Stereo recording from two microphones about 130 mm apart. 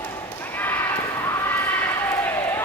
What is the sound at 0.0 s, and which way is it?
Basketball bounce, 15° left (ahead or behind).